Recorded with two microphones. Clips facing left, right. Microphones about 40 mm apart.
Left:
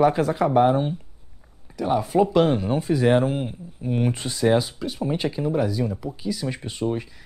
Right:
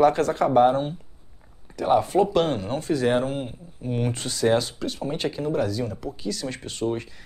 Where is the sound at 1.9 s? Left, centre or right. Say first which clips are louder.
Left 2 dB; centre.